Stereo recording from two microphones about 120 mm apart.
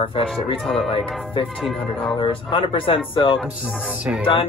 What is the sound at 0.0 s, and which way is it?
Speech, 50° left (ahead or behind).